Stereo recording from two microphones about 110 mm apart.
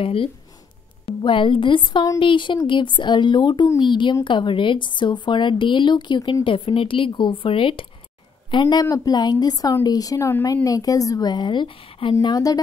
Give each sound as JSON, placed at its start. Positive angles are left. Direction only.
{"t": 0.0, "sound": "a woman's voice", "side_deg": 55}
{"t": 6.4, "sound": "a woman's voice", "side_deg": 55}